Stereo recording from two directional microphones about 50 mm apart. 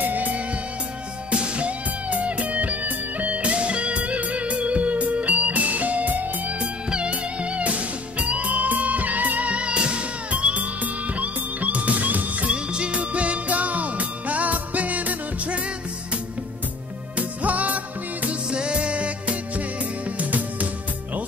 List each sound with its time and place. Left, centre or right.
0.0 s music: right
1.3 s music: right
17.2 s music: right
18.5 s music: centre